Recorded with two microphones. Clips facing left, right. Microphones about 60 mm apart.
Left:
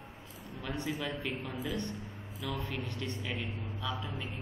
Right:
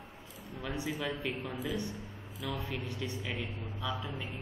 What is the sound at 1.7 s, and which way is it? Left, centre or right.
A man's voice, centre.